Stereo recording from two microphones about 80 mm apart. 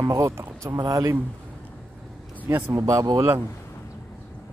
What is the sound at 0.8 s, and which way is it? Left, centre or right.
Speech, right.